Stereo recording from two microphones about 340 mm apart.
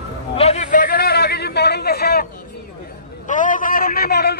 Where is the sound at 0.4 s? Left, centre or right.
Centre.